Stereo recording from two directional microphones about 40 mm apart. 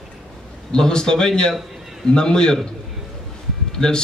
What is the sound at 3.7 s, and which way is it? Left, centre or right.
Speech, centre.